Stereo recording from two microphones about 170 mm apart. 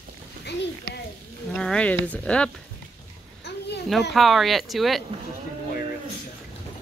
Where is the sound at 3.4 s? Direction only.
80° left.